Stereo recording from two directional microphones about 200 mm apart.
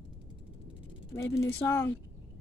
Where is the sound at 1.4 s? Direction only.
15° left (ahead or behind).